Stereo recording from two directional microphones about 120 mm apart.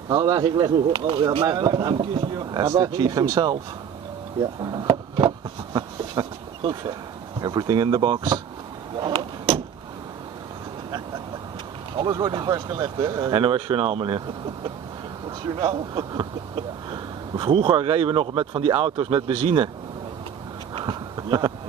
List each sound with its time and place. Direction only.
0.1 s speech: 35° right (ahead or behind)
5.1 s a sound: 40° right (ahead or behind)
8.9 s speech: 40° right (ahead or behind)
12.0 s speech: 40° right (ahead or behind)
13.4 s speech: 45° right (ahead or behind)
15.5 s speech: 35° right (ahead or behind)
16.9 s speech: 45° right (ahead or behind)
20.7 s a sound: 40° right (ahead or behind)